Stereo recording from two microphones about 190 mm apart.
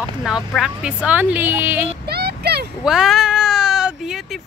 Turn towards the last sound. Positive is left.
turn(degrees=0)  # may be behind; listen again after turning